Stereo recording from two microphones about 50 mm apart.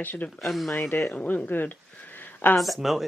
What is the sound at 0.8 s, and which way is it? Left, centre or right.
Speech, left.